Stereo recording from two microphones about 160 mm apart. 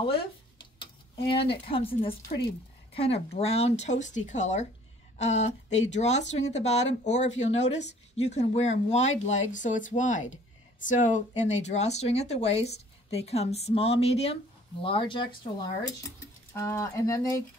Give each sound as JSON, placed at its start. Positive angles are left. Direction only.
{"t": 0.7, "sound": "a sound", "side_deg": 35}
{"t": 1.7, "sound": "speech", "side_deg": 35}
{"t": 16.5, "sound": "speech", "side_deg": 20}